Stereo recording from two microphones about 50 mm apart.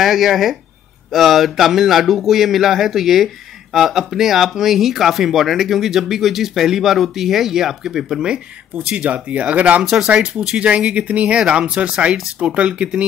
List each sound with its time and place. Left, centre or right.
0.0 s speech: centre
8.7 s speech: right
9.8 s speech: centre